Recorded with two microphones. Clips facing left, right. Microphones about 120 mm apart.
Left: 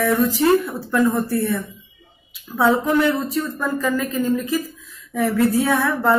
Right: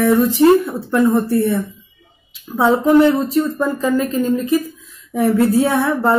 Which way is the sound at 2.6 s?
25° right (ahead or behind).